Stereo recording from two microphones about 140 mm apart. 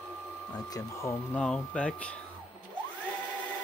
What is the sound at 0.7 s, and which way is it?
Speech, 20° left (ahead or behind).